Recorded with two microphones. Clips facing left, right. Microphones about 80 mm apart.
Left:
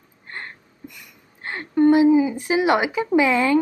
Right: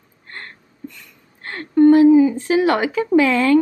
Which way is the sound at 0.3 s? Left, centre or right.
Centre.